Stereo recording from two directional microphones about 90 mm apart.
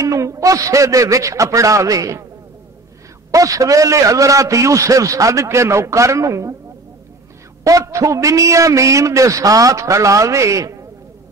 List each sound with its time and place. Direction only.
0.0 s a man's voice: 35° right (ahead or behind)
3.3 s a man's voice: 40° right (ahead or behind)
7.6 s a man's voice: 35° right (ahead or behind)